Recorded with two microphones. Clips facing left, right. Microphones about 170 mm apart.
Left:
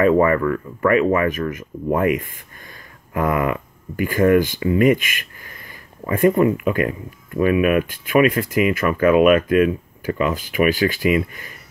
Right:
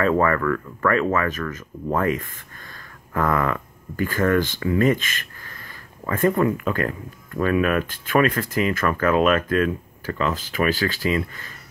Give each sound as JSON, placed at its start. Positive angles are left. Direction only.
{"t": 0.0, "sound": "speech", "side_deg": 15}